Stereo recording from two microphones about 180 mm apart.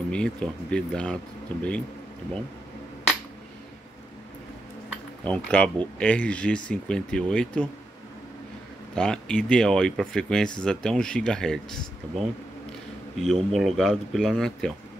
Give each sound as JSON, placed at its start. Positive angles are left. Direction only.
{"t": 0.1, "sound": "speech", "side_deg": 5}
{"t": 5.2, "sound": "speech", "side_deg": 5}
{"t": 8.9, "sound": "speech", "side_deg": 5}
{"t": 13.2, "sound": "speech", "side_deg": 0}